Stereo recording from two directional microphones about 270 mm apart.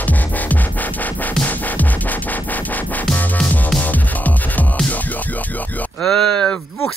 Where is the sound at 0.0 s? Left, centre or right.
Centre.